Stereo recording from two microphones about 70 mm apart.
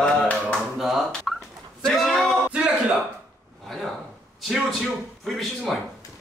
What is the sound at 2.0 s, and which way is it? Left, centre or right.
Male singing, centre.